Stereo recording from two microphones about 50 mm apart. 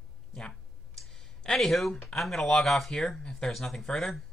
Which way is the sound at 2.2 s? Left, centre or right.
Centre.